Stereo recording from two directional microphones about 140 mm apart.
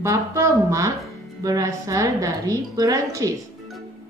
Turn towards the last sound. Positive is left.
turn(degrees=-25)  # may be behind; listen again after turning